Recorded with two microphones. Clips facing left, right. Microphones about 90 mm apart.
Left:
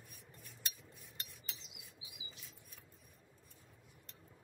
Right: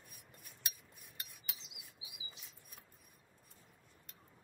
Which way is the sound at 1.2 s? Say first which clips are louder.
Right 1 dB; 15° right (ahead or behind).